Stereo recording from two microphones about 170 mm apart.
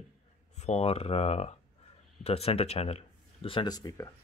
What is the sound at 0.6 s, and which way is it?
Speech, 40° left (ahead or behind).